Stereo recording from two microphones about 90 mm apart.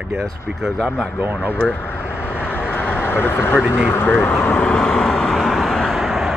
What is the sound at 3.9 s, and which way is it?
Vehicle, 20° left (ahead or behind).